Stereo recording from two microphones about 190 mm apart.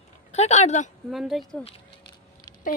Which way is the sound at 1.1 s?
Centre (ahead or behind).